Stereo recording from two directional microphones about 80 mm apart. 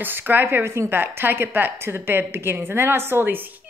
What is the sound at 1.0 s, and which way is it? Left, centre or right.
A woman's voice, right.